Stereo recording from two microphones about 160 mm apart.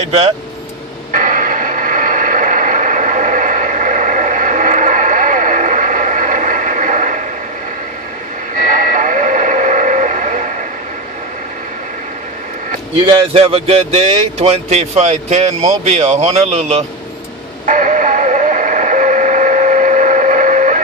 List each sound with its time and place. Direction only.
0.0 s speech: 35° right (ahead or behind)
1.1 s a sound: 55° right (ahead or behind)
8.5 s radio: 55° right (ahead or behind)
12.9 s speech: 35° right (ahead or behind)
17.6 s radio: 55° right (ahead or behind)